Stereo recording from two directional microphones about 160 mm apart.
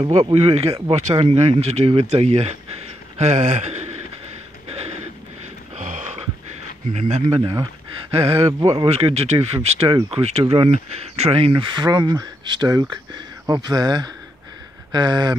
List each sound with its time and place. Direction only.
0.1 s speech: 40° right (ahead or behind)
4.6 s a sound: 40° right (ahead or behind)
6.9 s speech: 45° right (ahead or behind)
7.3 s speech: 30° right (ahead or behind)